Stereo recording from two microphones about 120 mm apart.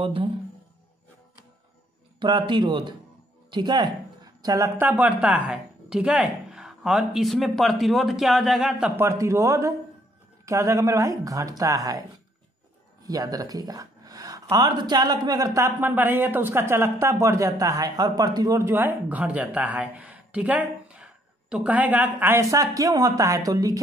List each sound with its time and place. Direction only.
0.0 s speech: 50° right (ahead or behind)
2.1 s a man's voice: 40° right (ahead or behind)
4.7 s speech: 15° right (ahead or behind)
8.9 s speech: 25° right (ahead or behind)
13.0 s speech: 30° right (ahead or behind)
15.8 s speech: 15° right (ahead or behind)